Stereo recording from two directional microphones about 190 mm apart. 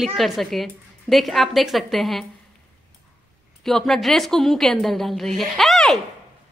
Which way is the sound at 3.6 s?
Centre (ahead or behind).